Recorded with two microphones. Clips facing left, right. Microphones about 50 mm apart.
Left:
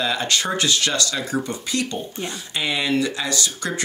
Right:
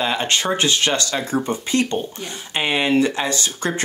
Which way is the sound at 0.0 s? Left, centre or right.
Right.